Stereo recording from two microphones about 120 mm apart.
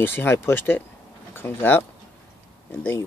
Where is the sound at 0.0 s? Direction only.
20° left (ahead or behind).